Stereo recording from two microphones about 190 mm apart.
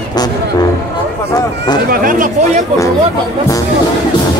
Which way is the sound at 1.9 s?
45° right (ahead or behind).